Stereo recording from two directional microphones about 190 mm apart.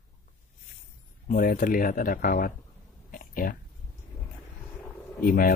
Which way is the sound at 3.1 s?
50° left (ahead or behind).